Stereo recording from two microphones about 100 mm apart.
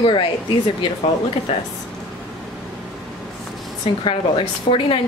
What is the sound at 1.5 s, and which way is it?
Speech, 70° left (ahead or behind).